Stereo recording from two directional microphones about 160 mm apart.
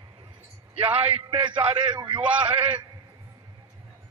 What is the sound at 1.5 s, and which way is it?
A man's voice, 25° right (ahead or behind).